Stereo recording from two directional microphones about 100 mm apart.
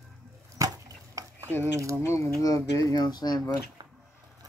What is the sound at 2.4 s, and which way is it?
Speech, 40° left (ahead or behind).